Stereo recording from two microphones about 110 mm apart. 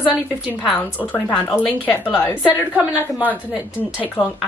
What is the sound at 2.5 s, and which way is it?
A woman's voice, 15° right (ahead or behind).